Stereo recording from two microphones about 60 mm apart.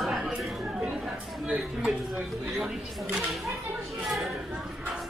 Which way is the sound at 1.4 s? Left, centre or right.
Centre.